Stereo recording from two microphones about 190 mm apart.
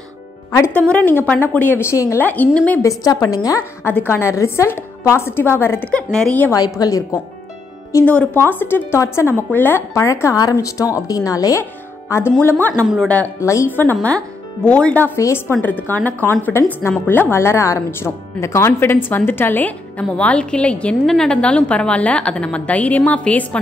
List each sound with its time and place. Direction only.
0.7 s a woman's voice: 10° left (ahead or behind)
7.9 s speech: 10° left (ahead or behind)
12.8 s speech: 5° right (ahead or behind)
13.1 s speech: 10° left (ahead or behind)